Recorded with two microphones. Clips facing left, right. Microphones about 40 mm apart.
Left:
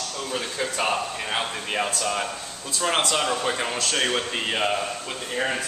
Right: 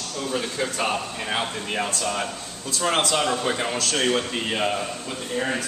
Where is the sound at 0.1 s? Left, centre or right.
Centre.